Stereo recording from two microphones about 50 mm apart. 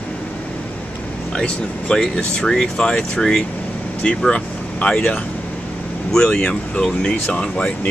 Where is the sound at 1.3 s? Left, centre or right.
Centre.